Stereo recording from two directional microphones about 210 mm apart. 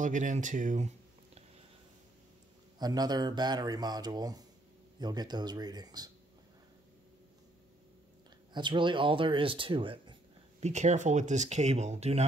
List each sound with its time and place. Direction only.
0.0 s speech: 35° right (ahead or behind)
2.8 s speech: 20° right (ahead or behind)
8.5 s speech: 20° right (ahead or behind)